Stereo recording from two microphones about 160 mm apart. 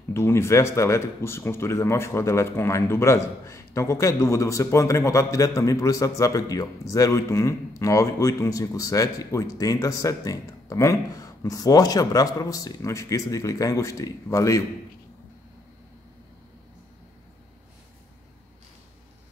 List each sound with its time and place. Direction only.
0.1 s a man's voice: 15° left (ahead or behind)